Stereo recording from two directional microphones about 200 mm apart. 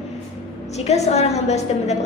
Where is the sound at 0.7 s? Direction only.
35° left (ahead or behind).